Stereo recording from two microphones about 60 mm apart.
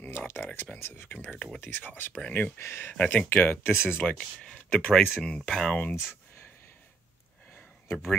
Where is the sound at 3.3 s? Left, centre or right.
Left.